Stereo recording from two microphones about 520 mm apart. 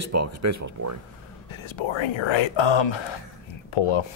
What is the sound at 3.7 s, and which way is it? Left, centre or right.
Speech, left.